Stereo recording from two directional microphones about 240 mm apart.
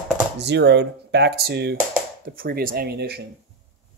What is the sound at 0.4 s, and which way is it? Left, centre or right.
Speech, right.